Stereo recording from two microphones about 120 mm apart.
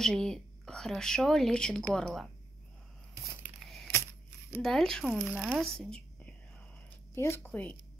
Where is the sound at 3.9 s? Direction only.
20° left (ahead or behind).